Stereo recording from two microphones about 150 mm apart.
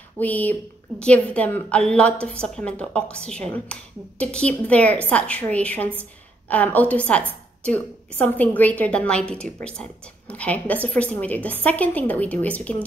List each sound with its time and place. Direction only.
0.2 s a woman's voice: 10° left (ahead or behind)